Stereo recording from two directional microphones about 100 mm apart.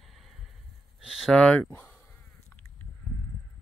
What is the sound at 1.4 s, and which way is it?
Speech, 15° left (ahead or behind).